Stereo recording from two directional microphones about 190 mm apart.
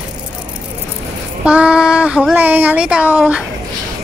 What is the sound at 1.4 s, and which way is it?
Speech, 5° right (ahead or behind).